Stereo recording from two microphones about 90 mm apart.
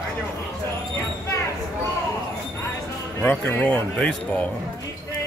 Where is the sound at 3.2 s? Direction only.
20° left (ahead or behind).